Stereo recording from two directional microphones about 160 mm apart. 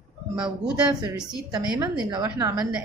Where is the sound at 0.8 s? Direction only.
25° right (ahead or behind).